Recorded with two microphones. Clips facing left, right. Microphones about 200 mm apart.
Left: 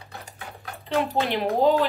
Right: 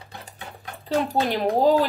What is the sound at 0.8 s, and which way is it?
Speech, 40° right (ahead or behind).